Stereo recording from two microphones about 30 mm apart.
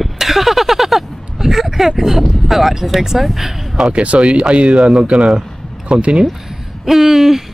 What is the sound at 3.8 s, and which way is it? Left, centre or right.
Speech, centre.